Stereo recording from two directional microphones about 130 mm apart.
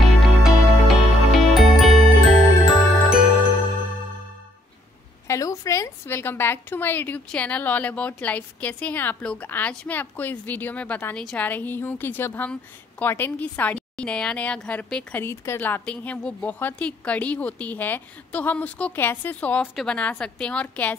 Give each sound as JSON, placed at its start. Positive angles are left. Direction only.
{"t": 0.0, "sound": "music", "side_deg": 0}
{"t": 5.3, "sound": "a sound", "side_deg": 25}
{"t": 7.2, "sound": "a woman's voice", "side_deg": 10}